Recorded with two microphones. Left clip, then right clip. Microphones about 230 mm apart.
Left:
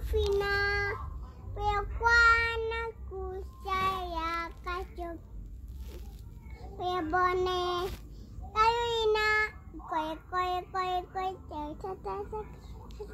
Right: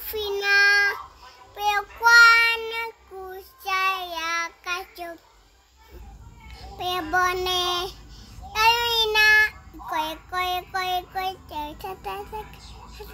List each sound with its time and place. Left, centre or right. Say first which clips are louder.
0.1 s child singing: right 7 dB; right
6.5 s child singing: right 5 dB; centre